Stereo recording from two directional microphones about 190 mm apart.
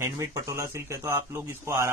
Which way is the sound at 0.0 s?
15° right (ahead or behind).